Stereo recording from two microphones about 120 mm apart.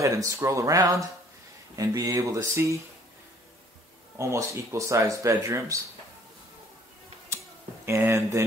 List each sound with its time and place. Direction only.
0.0 s speech: 25° right (ahead or behind)
4.2 s speech: 25° right (ahead or behind)
7.8 s speech: 20° right (ahead or behind)